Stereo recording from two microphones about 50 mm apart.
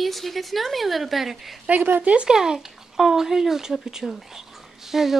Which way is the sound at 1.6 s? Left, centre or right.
Right.